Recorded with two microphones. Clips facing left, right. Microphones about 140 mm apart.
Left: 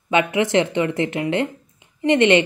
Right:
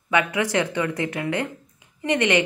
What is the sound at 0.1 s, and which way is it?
A woman's voice, 25° left (ahead or behind).